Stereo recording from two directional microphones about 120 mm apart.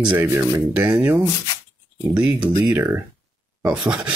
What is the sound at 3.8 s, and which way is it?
Speech, 10° right (ahead or behind).